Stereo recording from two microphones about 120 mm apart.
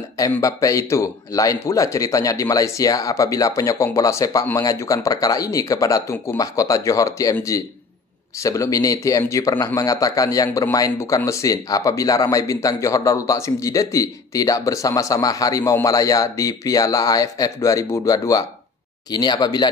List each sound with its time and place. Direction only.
0.2 s a man's voice: 25° left (ahead or behind)
8.4 s a man's voice: 25° left (ahead or behind)